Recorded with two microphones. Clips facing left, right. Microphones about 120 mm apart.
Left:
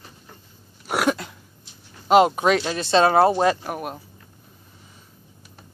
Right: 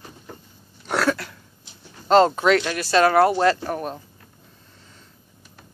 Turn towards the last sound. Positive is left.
turn(degrees=10)  # may be behind; listen again after turning